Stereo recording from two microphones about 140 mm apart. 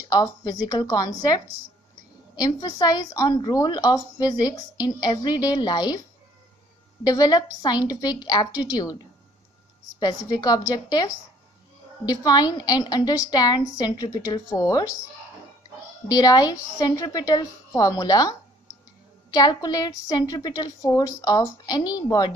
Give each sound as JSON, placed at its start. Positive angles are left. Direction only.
{"t": 0.1, "sound": "a woman's voice", "side_deg": 25}
{"t": 7.1, "sound": "a woman's voice", "side_deg": 25}
{"t": 16.1, "sound": "a woman's voice", "side_deg": 30}
{"t": 19.3, "sound": "a woman's voice", "side_deg": 25}